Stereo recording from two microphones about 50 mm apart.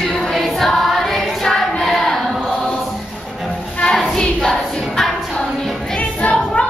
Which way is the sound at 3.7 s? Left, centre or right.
Centre.